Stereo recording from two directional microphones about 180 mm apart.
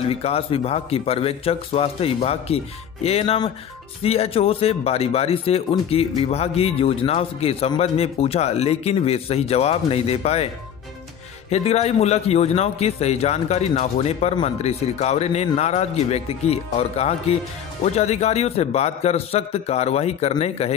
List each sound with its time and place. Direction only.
0.1 s speech: 35° left (ahead or behind)
11.5 s speech: 35° left (ahead or behind)